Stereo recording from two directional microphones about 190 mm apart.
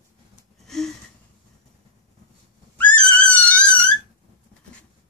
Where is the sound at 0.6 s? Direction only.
Centre (ahead or behind).